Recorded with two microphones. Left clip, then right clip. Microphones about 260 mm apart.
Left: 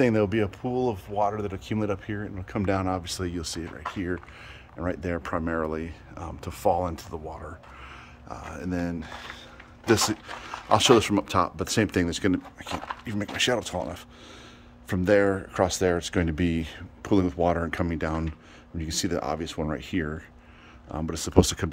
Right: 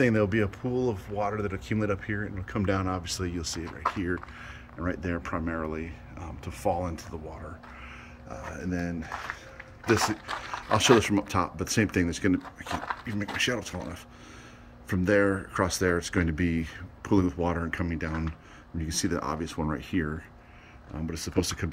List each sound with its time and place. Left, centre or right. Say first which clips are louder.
0.0 s speech: left 2 dB; left
1.2 s speech: left 3 dB; centre; by 7.5 s left
8.5 s speech: left 3 dB; left